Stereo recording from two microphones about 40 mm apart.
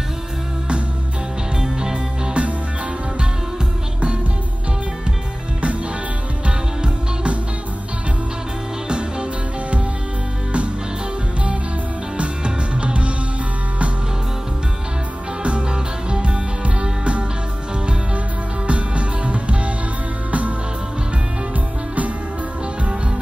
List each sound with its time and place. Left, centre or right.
1.6 s music: centre
6.4 s music: right
8.8 s music: right
12.2 s music: right
15.4 s music: right
18.7 s music: right